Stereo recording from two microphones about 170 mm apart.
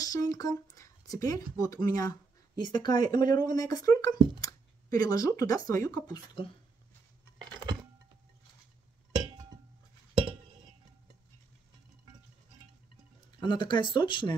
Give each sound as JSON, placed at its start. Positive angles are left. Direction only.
{"t": 0.0, "sound": "speech", "side_deg": 20}
{"t": 7.3, "sound": "a sound", "side_deg": -25}
{"t": 13.4, "sound": "speech", "side_deg": 25}